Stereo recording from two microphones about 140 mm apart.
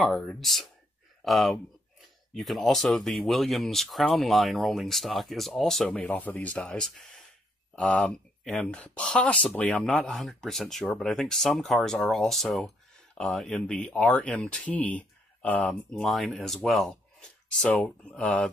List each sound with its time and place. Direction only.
0.0 s speech: 5° left (ahead or behind)